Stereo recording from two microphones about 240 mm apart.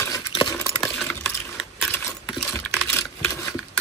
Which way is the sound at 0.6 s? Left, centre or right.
Centre.